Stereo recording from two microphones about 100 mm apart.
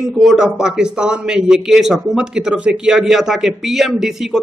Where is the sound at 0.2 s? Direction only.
5° right (ahead or behind).